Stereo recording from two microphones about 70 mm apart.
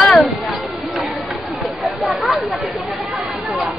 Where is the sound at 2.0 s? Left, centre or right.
Centre.